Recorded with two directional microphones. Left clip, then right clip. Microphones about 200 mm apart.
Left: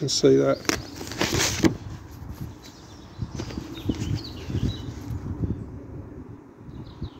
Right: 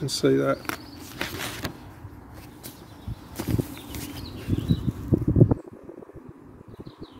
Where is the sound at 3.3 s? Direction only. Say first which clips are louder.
Right 5 dB; 30° right (ahead or behind).